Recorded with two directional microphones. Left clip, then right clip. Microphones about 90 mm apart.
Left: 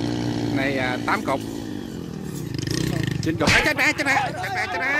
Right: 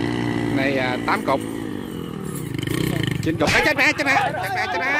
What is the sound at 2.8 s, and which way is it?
Roar, 25° left (ahead or behind).